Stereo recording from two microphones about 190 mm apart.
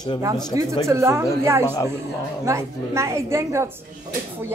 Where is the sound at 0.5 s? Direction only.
15° right (ahead or behind).